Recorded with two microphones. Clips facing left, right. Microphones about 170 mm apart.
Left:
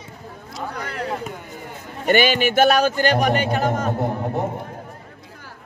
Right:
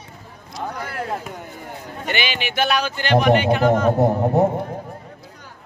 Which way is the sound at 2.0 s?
45° left (ahead or behind).